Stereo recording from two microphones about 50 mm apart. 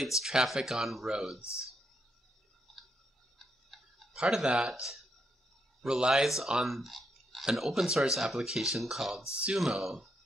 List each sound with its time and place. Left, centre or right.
0.0 s speech: centre
3.3 s tick-tock: centre
4.2 s speech: centre
4.6 s speech: centre
5.9 s speech: centre
6.6 s clicking: centre
7.5 s speech: centre